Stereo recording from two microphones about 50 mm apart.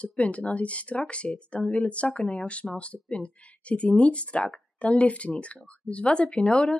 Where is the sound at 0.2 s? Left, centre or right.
Left.